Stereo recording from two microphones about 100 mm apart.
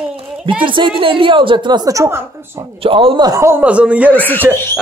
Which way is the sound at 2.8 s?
65° right (ahead or behind).